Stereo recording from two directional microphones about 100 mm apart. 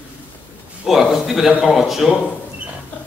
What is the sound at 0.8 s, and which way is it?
A man's voice, 5° right (ahead or behind).